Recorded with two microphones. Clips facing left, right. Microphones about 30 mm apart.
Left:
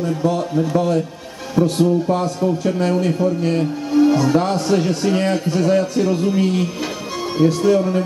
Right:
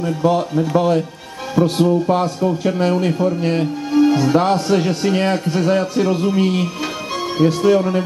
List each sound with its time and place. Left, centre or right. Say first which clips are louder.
0.7 s speech: right 5 dB; right